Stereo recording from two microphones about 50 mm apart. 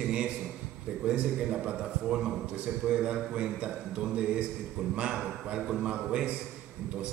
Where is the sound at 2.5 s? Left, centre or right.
Right.